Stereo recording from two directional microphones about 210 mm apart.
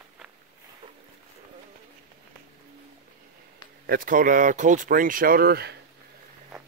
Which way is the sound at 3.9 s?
40° right (ahead or behind).